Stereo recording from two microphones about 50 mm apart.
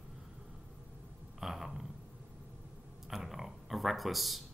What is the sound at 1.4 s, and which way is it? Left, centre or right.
Speech, centre.